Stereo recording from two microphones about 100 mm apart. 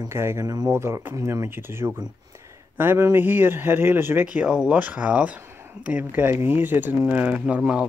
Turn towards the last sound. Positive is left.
turn(degrees=-10)  # may be behind; listen again after turning